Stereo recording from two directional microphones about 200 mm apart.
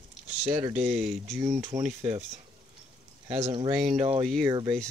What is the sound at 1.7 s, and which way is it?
Speech, 20° right (ahead or behind).